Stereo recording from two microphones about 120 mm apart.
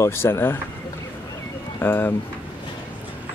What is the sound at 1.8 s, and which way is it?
Speech, 20° left (ahead or behind).